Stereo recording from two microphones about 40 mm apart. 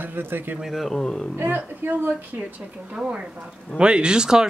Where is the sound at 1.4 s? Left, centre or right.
Right.